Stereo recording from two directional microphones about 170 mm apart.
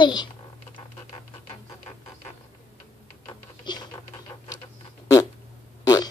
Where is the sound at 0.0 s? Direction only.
25° left (ahead or behind).